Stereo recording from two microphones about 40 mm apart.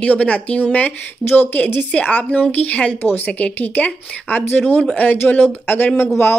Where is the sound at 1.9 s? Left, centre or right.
Left.